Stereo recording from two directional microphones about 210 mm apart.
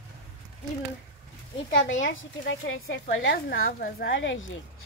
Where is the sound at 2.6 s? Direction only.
55° left (ahead or behind).